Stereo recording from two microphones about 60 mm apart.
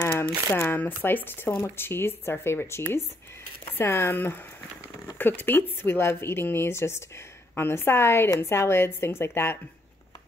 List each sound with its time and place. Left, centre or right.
0.1 s speech: left